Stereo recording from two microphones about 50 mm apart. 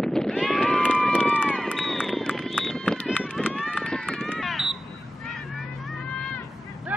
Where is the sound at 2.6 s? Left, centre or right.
Centre.